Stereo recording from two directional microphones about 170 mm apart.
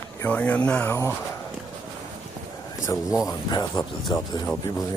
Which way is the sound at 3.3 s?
25° left (ahead or behind).